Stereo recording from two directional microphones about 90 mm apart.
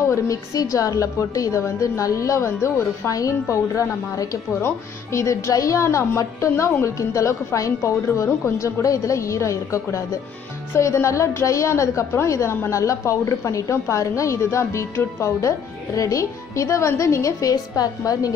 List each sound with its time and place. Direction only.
0.1 s a woman's voice: 40° left (ahead or behind)